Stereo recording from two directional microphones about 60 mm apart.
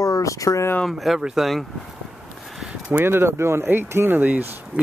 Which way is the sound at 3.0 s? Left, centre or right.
Right.